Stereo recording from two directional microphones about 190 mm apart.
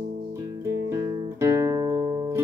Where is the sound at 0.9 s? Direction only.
15° right (ahead or behind).